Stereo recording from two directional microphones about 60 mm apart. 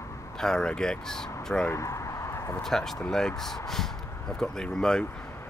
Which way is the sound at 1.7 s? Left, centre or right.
Left.